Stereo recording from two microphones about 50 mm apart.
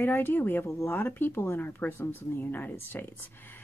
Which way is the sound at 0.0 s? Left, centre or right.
Left.